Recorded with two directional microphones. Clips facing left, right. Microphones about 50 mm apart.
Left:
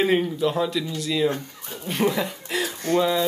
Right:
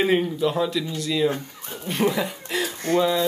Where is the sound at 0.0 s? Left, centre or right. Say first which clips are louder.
Even; centre.